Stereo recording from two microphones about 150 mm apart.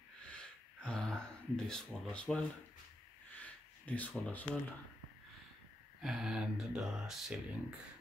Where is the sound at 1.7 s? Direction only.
5° left (ahead or behind).